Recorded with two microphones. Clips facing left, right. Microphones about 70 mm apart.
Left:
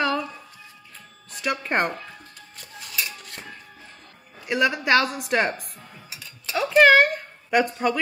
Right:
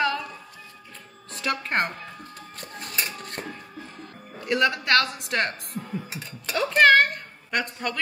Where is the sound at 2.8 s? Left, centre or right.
Right.